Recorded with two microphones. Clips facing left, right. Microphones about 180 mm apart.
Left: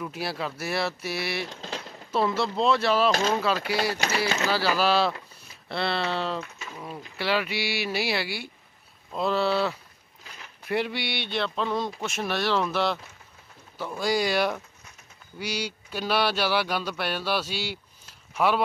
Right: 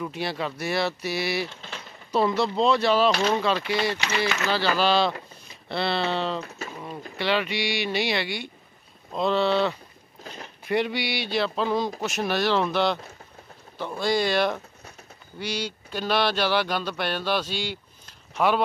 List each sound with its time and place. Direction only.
0.0 s speech: 5° left (ahead or behind)
1.5 s a sound: 35° left (ahead or behind)
2.1 s speech: centre (ahead or behind)
3.1 s speech: 45° left (ahead or behind)
3.3 s speech: 5° left (ahead or behind)
10.2 s a sound: 35° right (ahead or behind)
10.7 s speech: centre (ahead or behind)